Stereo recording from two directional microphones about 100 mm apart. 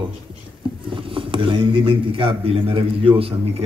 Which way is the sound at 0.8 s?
60° right (ahead or behind).